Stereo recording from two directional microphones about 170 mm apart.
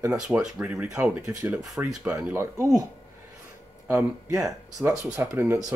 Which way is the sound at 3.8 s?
15° right (ahead or behind).